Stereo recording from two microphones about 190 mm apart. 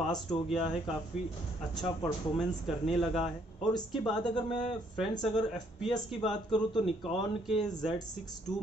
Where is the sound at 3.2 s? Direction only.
25° left (ahead or behind).